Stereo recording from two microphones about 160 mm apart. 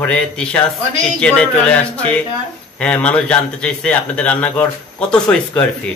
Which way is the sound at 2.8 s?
10° left (ahead or behind).